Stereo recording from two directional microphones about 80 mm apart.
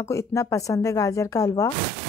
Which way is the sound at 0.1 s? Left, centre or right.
Left.